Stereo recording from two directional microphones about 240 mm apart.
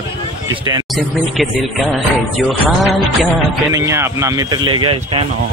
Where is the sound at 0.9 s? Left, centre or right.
Centre.